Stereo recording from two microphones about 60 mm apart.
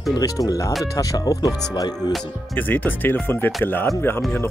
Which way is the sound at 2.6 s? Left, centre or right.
Left.